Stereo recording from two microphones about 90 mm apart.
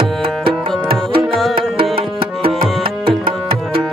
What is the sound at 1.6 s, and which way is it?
Tabla, 85° right.